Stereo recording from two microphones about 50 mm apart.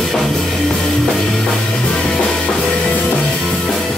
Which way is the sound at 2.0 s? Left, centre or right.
Left.